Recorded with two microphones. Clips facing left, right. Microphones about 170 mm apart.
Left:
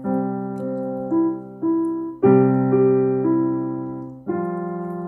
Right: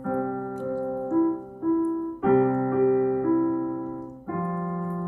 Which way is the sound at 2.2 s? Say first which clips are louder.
Left 7 dB; 60° left (ahead or behind).